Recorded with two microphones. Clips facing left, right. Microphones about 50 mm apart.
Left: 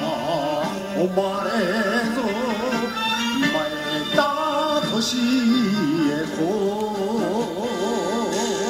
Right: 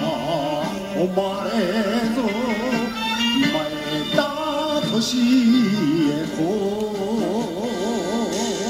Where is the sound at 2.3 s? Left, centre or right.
Right.